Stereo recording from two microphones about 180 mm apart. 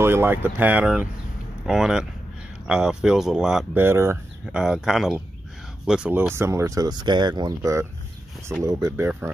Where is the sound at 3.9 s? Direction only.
15° right (ahead or behind).